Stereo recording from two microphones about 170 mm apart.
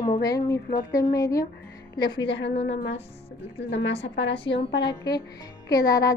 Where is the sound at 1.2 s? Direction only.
20° left (ahead or behind).